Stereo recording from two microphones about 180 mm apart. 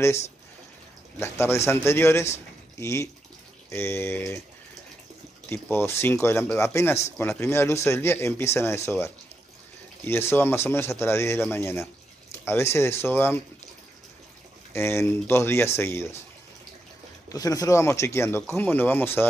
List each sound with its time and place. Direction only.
1.2 s speech: 15° left (ahead or behind)
5.5 s speech: 15° left (ahead or behind)
14.7 s speech: 15° left (ahead or behind)
17.3 s speech: 20° left (ahead or behind)